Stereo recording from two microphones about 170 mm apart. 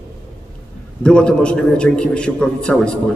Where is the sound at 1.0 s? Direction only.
5° left (ahead or behind).